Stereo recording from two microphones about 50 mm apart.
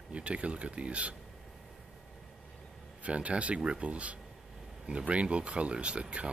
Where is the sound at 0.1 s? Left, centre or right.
Right.